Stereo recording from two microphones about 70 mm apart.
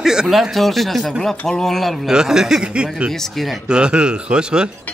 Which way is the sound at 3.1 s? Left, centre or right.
Centre.